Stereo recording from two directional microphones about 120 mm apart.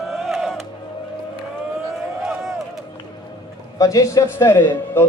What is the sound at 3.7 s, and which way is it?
A man's voice, 30° left (ahead or behind).